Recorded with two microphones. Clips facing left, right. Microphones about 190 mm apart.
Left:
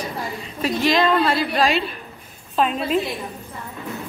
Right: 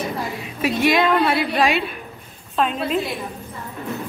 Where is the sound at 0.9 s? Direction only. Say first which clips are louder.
Left 2 dB; 5° right (ahead or behind).